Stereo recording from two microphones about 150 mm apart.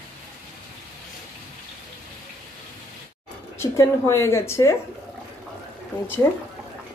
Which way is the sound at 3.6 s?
20° left (ahead or behind).